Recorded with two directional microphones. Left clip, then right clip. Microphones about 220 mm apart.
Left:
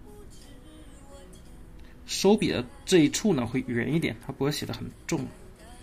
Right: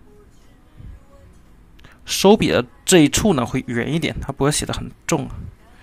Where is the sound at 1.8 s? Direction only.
25° right (ahead or behind).